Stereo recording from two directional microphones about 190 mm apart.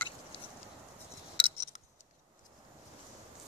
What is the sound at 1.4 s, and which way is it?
Scissors, 30° left (ahead or behind).